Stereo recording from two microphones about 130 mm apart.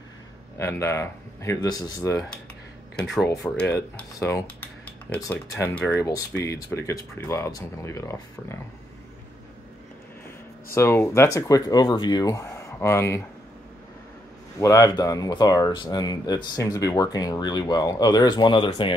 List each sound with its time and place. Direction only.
0.6 s speech: 20° left (ahead or behind)
3.0 s speech: 5° left (ahead or behind)
3.9 s speech: 20° left (ahead or behind)
5.9 s speech: 25° left (ahead or behind)
10.7 s speech: 20° left (ahead or behind)
14.6 s speech: 30° left (ahead or behind)